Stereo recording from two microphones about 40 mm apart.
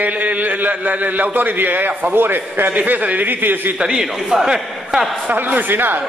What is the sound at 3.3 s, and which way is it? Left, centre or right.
Speech, right.